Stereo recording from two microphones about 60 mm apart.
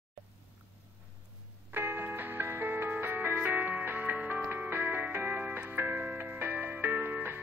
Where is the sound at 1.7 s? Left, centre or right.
Right.